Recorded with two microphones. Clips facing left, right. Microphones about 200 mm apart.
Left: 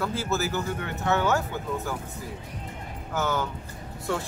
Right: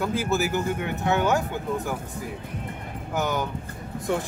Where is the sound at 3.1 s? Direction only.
15° right (ahead or behind).